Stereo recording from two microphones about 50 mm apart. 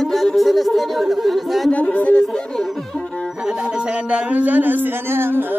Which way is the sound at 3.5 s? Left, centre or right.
Centre.